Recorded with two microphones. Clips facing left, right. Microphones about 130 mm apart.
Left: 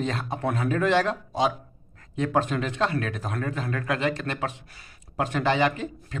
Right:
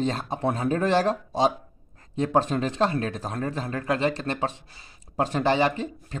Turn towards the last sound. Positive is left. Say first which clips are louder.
# even
turn(degrees=-30)  # may be behind; listen again after turning